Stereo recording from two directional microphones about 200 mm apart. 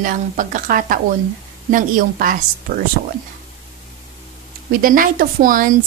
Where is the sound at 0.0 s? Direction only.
40° right (ahead or behind).